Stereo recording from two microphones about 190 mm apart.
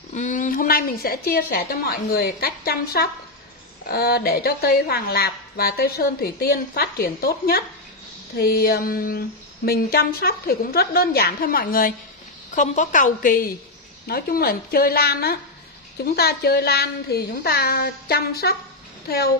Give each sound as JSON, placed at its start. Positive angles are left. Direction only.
{"t": 0.1, "sound": "a woman's voice", "side_deg": 40}